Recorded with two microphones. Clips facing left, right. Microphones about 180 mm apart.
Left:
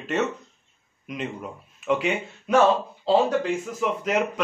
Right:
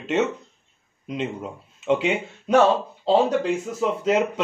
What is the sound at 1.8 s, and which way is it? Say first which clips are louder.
Speech: right 2 dB; 25° right (ahead or behind).